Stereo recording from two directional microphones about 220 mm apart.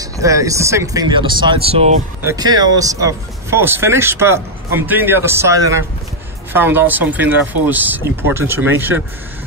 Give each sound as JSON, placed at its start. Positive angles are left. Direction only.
{"t": 0.0, "sound": "speech", "side_deg": -15}